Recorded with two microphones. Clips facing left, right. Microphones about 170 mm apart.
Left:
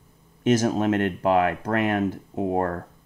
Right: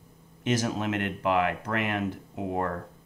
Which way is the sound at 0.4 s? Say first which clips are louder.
Left 7 dB; 45° left (ahead or behind).